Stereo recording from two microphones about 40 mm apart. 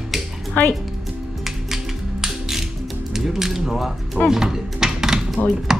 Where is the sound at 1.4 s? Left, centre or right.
Centre.